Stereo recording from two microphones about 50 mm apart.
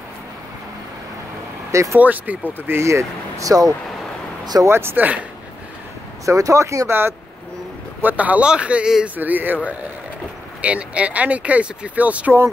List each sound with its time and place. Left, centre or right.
1.7 s speech: right
2.0 s speech: right
2.8 s speech: right
4.6 s speech: right
4.9 s speech: right
6.2 s speech: right
6.9 s speech: right
8.0 s speech: right
9.0 s speech: right
10.6 s speech: right